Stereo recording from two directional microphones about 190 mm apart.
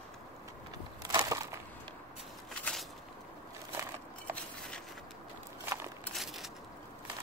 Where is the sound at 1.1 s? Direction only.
20° right (ahead or behind).